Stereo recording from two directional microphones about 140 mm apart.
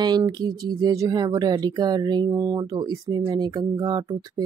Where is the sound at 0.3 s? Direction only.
30° right (ahead or behind).